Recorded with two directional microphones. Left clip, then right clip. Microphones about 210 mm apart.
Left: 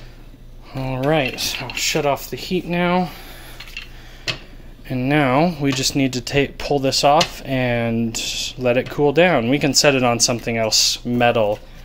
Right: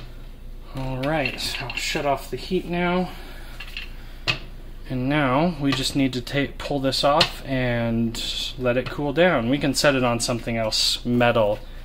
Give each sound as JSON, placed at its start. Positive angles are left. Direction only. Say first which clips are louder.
{"t": 0.7, "sound": "speech", "louder": "left 5 dB", "side_deg": 25}
{"t": 1.0, "sound": "speech", "louder": "left 5 dB", "side_deg": 45}
{"t": 4.8, "sound": "speech", "louder": "left 4 dB", "side_deg": 30}